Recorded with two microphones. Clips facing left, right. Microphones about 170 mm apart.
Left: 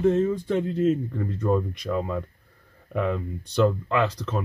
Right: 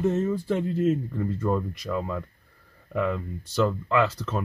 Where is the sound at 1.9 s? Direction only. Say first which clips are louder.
Left 2 dB; 15° left (ahead or behind).